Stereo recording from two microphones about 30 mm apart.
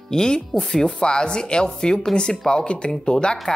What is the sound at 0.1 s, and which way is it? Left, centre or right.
Speech, left.